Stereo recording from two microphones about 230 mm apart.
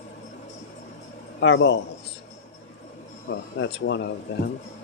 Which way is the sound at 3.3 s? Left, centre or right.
Left.